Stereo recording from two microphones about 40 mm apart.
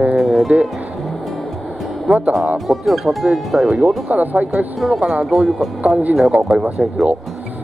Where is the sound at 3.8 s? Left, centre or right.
Right.